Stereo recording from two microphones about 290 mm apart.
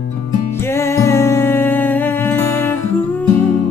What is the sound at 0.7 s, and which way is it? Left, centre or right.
Music, centre.